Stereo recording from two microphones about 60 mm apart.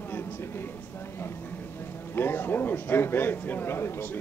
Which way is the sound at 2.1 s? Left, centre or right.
Left.